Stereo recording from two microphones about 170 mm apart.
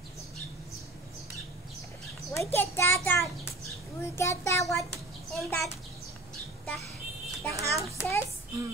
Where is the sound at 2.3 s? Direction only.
15° left (ahead or behind).